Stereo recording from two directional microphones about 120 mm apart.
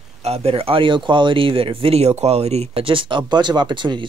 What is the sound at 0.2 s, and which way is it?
Speech, 55° right (ahead or behind).